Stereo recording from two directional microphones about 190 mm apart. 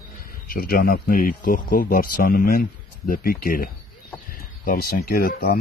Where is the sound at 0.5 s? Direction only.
50° left (ahead or behind).